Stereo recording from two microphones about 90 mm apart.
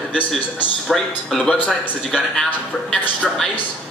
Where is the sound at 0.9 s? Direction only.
5° left (ahead or behind).